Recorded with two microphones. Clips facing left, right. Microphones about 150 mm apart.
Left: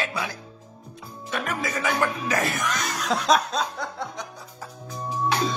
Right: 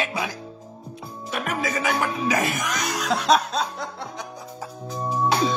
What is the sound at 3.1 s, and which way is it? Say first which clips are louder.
Music: right 1 dB; centre (ahead or behind).